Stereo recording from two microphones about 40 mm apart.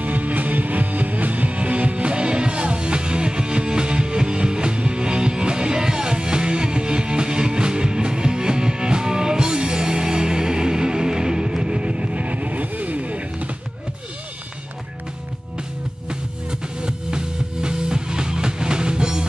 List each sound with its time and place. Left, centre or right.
0.0 s music: right
16.1 s music: centre